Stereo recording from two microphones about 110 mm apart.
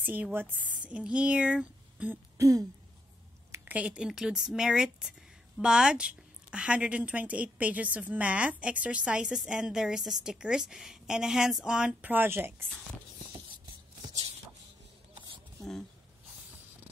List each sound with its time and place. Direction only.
0.0 s a woman's voice: 15° right (ahead or behind)
2.3 s throat clearing: 30° right (ahead or behind)
3.6 s a woman's voice: 10° right (ahead or behind)